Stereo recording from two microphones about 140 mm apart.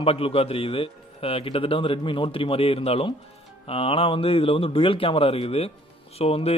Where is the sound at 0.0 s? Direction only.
45° left (ahead or behind).